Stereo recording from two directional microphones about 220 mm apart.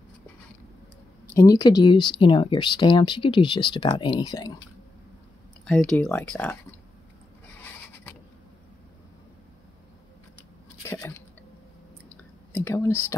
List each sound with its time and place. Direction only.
1.3 s speech: 15° left (ahead or behind)
5.7 s speech: 5° left (ahead or behind)
10.8 s a sound: 10° left (ahead or behind)
12.6 s speech: 15° left (ahead or behind)